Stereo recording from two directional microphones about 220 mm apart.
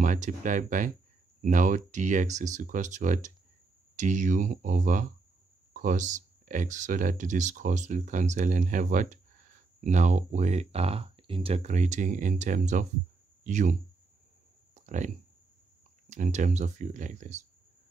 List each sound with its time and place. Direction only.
0.0 s speech: 35° right (ahead or behind)
14.7 s a sound: 35° right (ahead or behind)
16.1 s speech: 35° right (ahead or behind)